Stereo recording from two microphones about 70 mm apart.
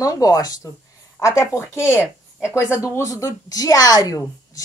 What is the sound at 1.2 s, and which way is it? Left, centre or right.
Speech, left.